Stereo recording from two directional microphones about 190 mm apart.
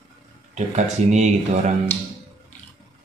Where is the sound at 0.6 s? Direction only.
35° right (ahead or behind).